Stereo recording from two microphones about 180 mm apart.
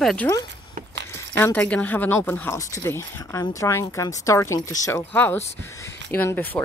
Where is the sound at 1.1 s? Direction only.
10° left (ahead or behind).